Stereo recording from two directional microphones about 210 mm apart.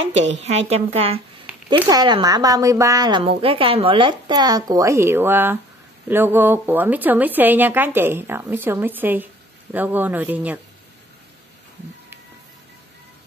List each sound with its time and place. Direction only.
0.4 s a woman's voice: 30° right (ahead or behind); by 10.6 s 10° right (ahead or behind)